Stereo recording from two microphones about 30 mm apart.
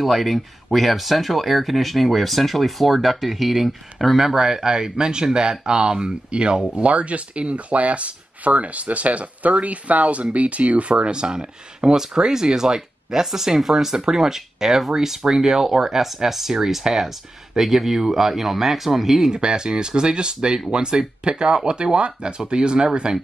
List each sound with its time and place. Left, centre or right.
0.0 s speech: centre
4.2 s speech: centre; by 6.6 s right
6.9 s speech: right
11.1 s speech: right; by 19.3 s centre
19.3 s speech: right